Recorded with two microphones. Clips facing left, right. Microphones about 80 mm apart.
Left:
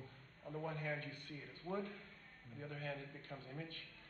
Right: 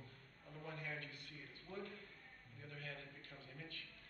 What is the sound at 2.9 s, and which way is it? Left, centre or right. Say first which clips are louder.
Speech: left 6 dB; left.